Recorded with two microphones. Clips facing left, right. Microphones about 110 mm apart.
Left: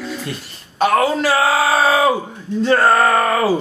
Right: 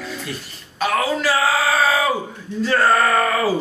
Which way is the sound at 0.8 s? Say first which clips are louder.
Left 5 dB; 30° left (ahead or behind).